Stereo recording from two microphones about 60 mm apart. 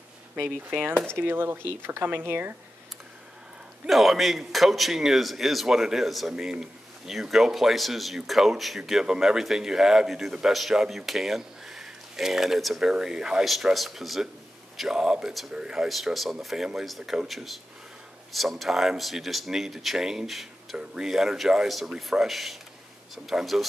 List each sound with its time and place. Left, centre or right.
0.7 s speech: right
3.8 s a man's voice: centre
15.9 s a man's voice: centre